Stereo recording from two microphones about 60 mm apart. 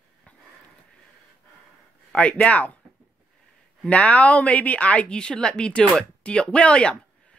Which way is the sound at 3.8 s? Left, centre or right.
Left.